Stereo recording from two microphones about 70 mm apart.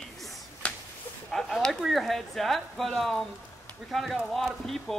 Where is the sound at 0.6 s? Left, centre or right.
Centre.